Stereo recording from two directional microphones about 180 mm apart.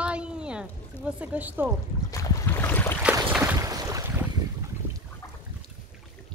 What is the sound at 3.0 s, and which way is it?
Boat, 5° right (ahead or behind).